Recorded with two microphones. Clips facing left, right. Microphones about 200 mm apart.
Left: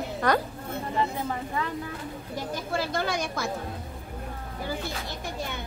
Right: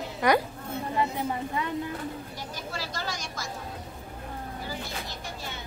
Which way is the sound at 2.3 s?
55° left (ahead or behind).